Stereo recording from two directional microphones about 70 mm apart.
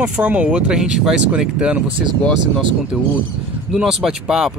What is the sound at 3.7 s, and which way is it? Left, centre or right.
Speech, centre.